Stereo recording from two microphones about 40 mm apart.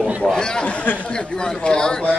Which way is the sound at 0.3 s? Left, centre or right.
Centre.